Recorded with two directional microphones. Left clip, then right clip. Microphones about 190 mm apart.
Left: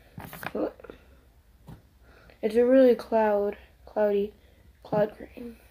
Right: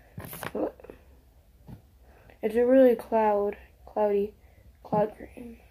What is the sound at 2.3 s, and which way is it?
Speech, 10° left (ahead or behind).